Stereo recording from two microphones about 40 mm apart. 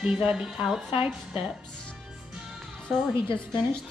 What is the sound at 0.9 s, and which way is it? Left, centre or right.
Speech, right.